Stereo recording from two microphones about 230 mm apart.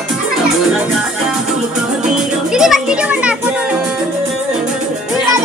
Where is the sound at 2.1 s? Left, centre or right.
Centre.